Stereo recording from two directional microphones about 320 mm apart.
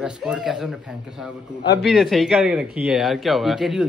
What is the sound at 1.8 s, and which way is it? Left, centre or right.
Speech, centre.